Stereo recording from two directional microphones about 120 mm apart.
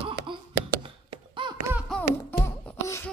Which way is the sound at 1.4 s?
40° right (ahead or behind).